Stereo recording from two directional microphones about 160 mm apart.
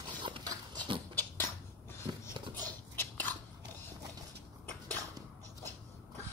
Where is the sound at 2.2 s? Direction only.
10° left (ahead or behind).